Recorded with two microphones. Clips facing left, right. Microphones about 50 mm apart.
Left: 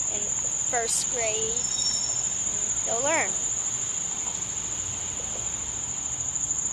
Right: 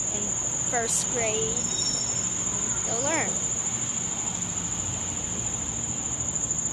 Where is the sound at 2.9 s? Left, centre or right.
Centre.